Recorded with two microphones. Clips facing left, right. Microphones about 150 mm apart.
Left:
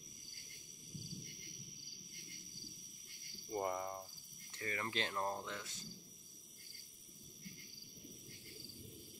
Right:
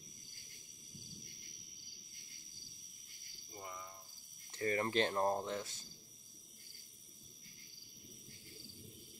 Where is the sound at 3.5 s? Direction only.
55° left (ahead or behind).